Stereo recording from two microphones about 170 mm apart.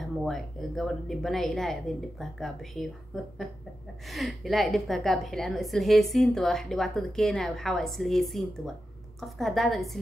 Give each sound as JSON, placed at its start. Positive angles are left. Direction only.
{"t": 0.0, "sound": "a woman's voice", "side_deg": 0}